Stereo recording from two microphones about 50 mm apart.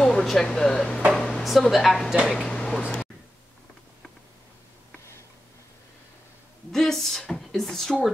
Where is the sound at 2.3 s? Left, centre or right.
Centre.